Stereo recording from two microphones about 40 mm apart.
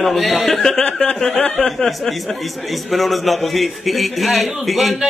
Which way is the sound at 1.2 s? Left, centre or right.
Left.